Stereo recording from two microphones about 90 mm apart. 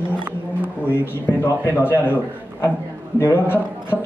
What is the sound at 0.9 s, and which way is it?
A man's voice, 25° left (ahead or behind).